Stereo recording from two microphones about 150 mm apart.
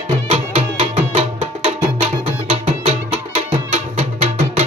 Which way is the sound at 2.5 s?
45° right (ahead or behind).